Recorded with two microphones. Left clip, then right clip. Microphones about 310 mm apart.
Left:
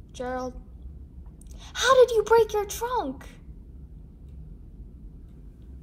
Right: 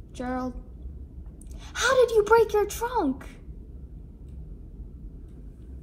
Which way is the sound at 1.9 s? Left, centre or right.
Left.